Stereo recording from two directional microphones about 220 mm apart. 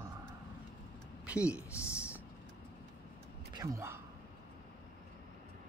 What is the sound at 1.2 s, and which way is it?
Speech, 5° right (ahead or behind).